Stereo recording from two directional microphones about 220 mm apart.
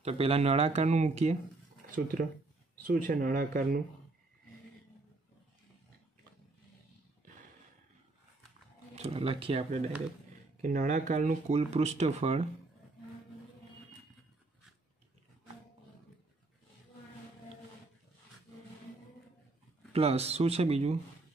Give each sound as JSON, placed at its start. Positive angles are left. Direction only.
{"t": 0.0, "sound": "speech", "side_deg": -25}
{"t": 2.9, "sound": "speech", "side_deg": -35}
{"t": 8.9, "sound": "speech", "side_deg": -30}
{"t": 19.9, "sound": "speech", "side_deg": -30}